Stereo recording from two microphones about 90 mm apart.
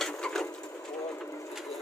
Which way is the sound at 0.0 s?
5° left (ahead or behind).